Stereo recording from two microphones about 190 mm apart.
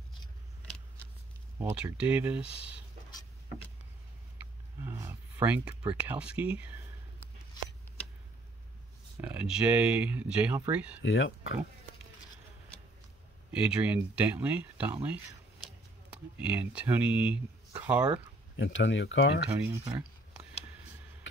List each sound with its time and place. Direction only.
1.6 s speech: 10° right (ahead or behind)
3.1 s vehicle: 20° left (ahead or behind)
4.8 s speech: 15° right (ahead or behind)
9.2 s speech: 5° right (ahead or behind)
11.0 s speech: 80° left
13.5 s speech: 5° right (ahead or behind)
16.3 s speech: 5° right (ahead or behind)
18.6 s speech: 80° left
19.6 s speech: 15° right (ahead or behind)